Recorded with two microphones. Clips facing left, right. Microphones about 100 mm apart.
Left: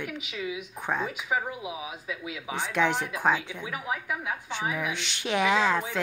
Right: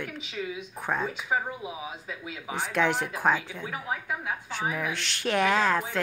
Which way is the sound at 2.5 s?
Centre (ahead or behind).